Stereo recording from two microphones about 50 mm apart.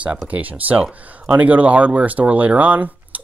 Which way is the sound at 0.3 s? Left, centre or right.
Right.